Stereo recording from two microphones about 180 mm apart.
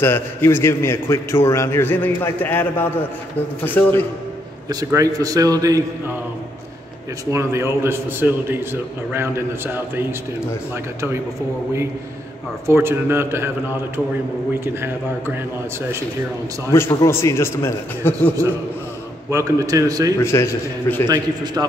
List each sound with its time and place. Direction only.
0.0 s a man's voice: 10° left (ahead or behind)
4.6 s a man's voice: 20° right (ahead or behind)
7.2 s a man's voice: 15° right (ahead or behind)
12.6 s a man's voice: 15° right (ahead or behind)
14.6 s a man's voice: 15° right (ahead or behind)
16.7 s a man's voice: 15° left (ahead or behind)
19.3 s a man's voice: 15° right (ahead or behind)
20.2 s a man's voice: 15° left (ahead or behind)
21.6 s a man's voice: 15° right (ahead or behind)